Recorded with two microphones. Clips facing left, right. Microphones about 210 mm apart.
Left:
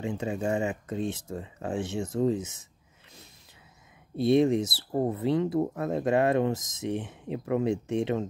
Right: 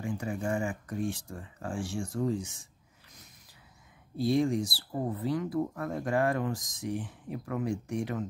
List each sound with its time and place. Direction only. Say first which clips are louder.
0.0 s speech: left 4 dB; 25° left (ahead or behind)
4.2 s speech: left 5 dB; 25° left (ahead or behind)